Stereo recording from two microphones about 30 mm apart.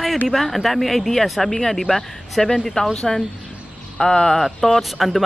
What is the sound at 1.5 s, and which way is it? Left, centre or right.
Speech, centre.